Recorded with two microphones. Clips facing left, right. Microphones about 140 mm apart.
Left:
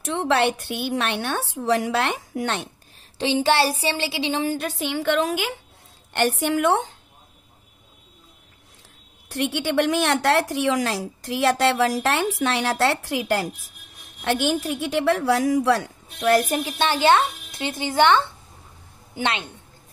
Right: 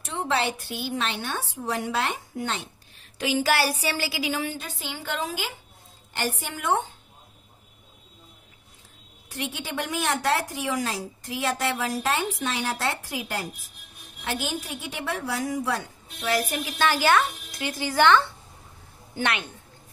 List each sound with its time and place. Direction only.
0.0 s a woman's voice: 80° left
3.2 s speech: 30° left (ahead or behind)
4.5 s a woman's voice: 65° left (ahead or behind); by 6.9 s 90° left
9.3 s a woman's voice: 75° left (ahead or behind)
16.3 s a woman's voice: 50° left (ahead or behind)
16.5 s speech: 30° left (ahead or behind)